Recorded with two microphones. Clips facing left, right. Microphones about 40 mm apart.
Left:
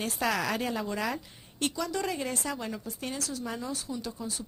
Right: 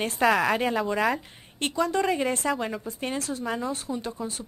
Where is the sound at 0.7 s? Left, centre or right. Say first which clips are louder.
Right 7 dB; centre.